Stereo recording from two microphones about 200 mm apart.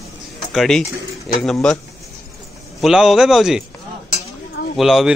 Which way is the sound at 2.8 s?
Centre (ahead or behind).